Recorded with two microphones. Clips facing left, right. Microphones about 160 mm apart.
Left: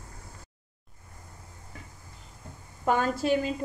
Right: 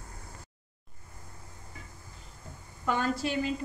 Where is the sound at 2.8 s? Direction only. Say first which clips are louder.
Left 4 dB; 45° left (ahead or behind).